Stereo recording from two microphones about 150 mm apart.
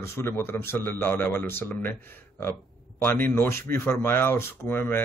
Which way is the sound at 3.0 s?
15° left (ahead or behind).